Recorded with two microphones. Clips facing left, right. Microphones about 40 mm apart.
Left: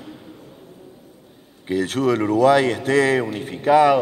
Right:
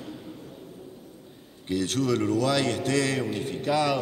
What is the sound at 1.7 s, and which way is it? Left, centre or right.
A man's voice, left.